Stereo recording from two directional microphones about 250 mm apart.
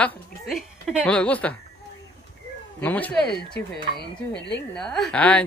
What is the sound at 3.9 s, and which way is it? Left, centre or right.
Speech, left.